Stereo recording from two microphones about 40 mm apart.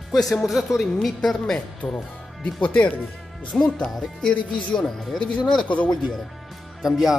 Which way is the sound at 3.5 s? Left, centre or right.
Centre.